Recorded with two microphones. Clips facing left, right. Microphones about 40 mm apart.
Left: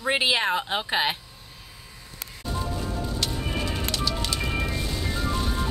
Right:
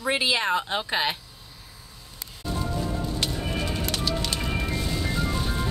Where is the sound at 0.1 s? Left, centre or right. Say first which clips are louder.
Left 1 dB; centre.